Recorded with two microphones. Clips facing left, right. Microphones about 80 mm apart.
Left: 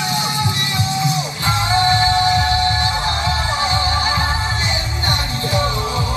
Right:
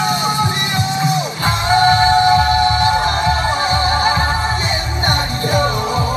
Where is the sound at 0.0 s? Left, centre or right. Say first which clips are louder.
Right 4 dB; right.